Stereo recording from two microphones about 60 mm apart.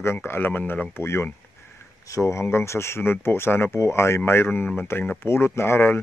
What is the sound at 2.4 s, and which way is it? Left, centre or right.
A man's voice, left.